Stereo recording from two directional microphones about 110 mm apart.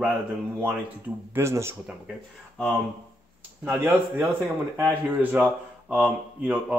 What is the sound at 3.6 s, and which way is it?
Speech, 15° right (ahead or behind).